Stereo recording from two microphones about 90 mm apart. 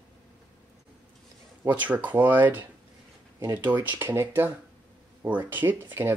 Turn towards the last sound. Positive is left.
turn(degrees=-25)  # may be behind; listen again after turning